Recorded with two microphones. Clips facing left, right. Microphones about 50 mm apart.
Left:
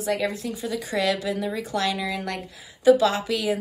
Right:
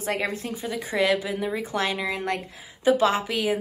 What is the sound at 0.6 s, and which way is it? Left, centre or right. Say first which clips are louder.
Speech: right 1 dB; right.